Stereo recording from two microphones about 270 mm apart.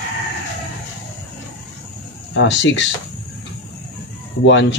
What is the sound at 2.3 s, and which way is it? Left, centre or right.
Speech, left.